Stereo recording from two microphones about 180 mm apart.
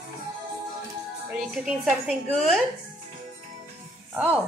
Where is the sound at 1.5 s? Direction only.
5° right (ahead or behind).